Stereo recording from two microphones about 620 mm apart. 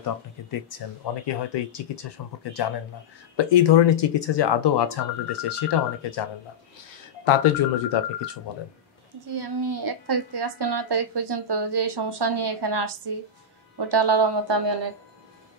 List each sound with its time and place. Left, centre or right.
0.0 s speech: left
7.5 s speech: left
9.2 s a woman's voice: right